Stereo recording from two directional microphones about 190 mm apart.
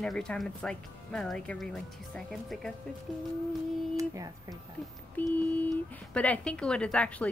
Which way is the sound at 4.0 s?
15° right (ahead or behind).